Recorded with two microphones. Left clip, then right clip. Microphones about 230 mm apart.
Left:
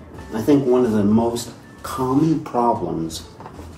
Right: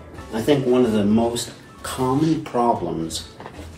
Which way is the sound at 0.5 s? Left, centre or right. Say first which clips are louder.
Left 1 dB; left.